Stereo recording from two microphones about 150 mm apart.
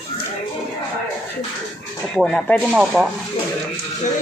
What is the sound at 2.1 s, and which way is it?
Speech, 5° left (ahead or behind).